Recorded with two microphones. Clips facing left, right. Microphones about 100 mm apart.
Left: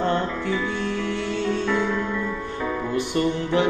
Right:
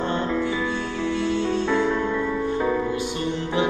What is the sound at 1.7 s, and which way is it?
Music, 20° right (ahead or behind).